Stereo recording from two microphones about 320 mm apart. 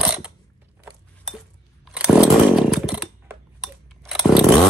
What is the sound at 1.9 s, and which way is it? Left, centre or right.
Chainsaw, centre.